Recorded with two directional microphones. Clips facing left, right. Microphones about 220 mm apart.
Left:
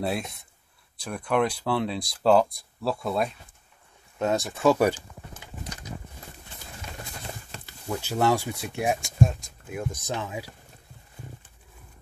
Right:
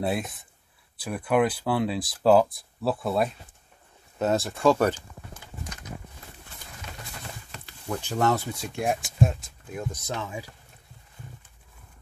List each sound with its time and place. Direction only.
0.0 s speech: centre (ahead or behind)
7.6 s speech: 5° left (ahead or behind)
9.7 s speech: 10° left (ahead or behind)